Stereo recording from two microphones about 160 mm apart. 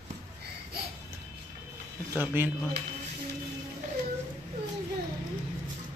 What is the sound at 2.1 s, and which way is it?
Speech, 10° right (ahead or behind).